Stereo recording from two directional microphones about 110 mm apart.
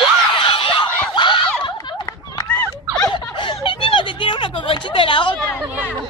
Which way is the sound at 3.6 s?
50° left (ahead or behind).